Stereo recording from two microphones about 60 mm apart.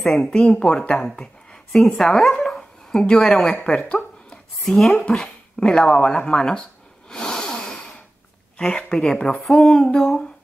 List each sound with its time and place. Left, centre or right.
0.0 s speech: centre
1.8 s speech: centre
7.1 s a sound: centre
8.5 s speech: centre